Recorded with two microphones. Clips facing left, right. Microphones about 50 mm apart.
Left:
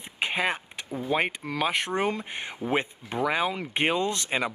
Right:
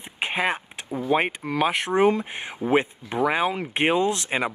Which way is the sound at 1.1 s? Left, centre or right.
Centre.